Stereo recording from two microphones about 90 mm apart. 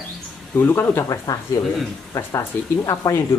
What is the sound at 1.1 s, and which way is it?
Speech, 45° left (ahead or behind).